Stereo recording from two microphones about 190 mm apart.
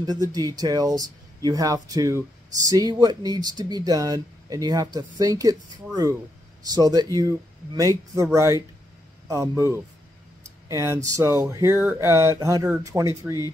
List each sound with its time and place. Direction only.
0.0 s speech: 20° right (ahead or behind)
6.6 s speech: 20° right (ahead or behind)